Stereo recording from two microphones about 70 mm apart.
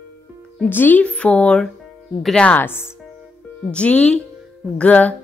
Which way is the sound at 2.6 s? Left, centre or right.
Left.